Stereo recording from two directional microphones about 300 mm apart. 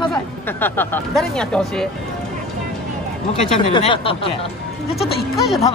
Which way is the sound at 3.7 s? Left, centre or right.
Centre.